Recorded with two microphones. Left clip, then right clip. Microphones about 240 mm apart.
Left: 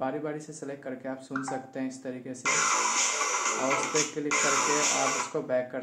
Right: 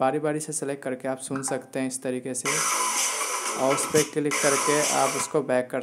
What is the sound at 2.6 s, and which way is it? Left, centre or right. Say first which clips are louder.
Music: right 1 dB; centre.